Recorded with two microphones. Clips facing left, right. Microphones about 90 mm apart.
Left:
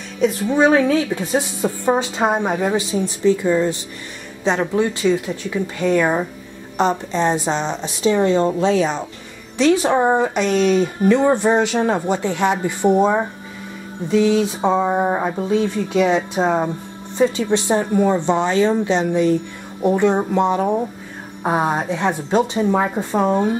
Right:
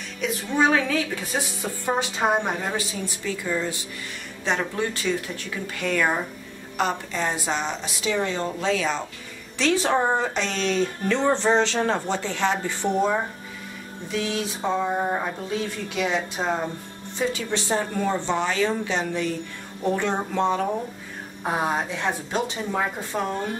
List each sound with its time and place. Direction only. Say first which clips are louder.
0.2 s a woman's voice: left 7 dB; 35° left (ahead or behind)